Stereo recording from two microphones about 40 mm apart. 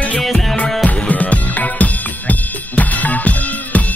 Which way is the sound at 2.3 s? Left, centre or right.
Left.